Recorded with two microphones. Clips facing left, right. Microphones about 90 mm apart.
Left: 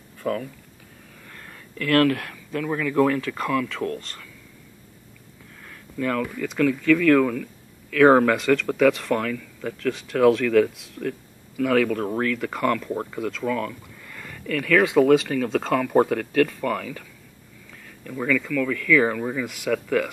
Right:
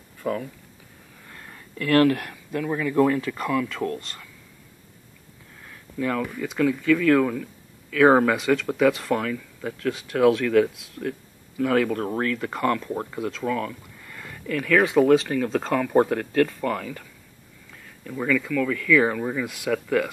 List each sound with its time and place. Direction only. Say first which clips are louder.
0.2 s speech: left 1 dB; 10° right (ahead or behind)
5.9 s speech: left 1 dB; 10° right (ahead or behind)
11.5 s speech: left 1 dB; 20° right (ahead or behind)
18.1 s speech: even; 10° right (ahead or behind)